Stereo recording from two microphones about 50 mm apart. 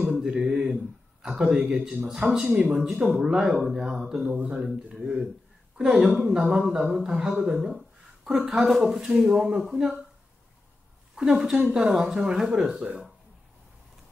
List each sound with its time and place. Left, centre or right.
0.2 s mantra: centre
1.3 s speech: right
11.3 s speech: centre